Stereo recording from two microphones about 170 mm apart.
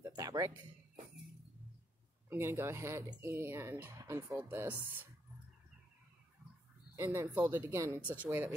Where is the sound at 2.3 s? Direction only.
15° right (ahead or behind).